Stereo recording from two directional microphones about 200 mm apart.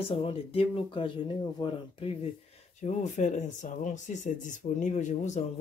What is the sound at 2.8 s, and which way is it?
Speech, 35° left (ahead or behind).